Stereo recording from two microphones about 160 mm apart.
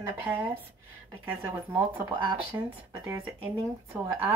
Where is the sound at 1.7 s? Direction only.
15° right (ahead or behind).